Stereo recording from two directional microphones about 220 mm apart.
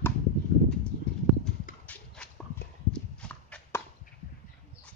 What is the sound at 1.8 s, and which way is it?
Dog, 5° left (ahead or behind).